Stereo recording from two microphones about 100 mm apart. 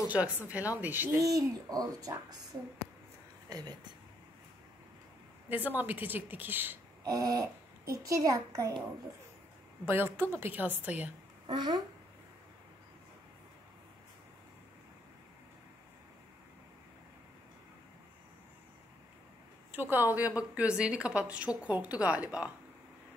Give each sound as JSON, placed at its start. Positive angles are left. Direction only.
{"t": 0.1, "sound": "a woman's voice", "side_deg": -15}
{"t": 1.1, "sound": "a child's voice", "side_deg": -35}
{"t": 3.4, "sound": "speech", "side_deg": -40}
{"t": 5.5, "sound": "a woman's voice", "side_deg": -15}
{"t": 7.1, "sound": "a child's voice", "side_deg": -35}
{"t": 9.8, "sound": "a woman's voice", "side_deg": -20}
{"t": 11.4, "sound": "a child's voice", "side_deg": -45}
{"t": 19.7, "sound": "a woman's voice", "side_deg": -20}